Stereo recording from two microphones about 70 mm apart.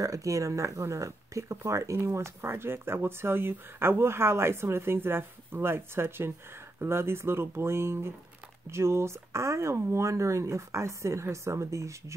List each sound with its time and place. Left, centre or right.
0.0 s speech: right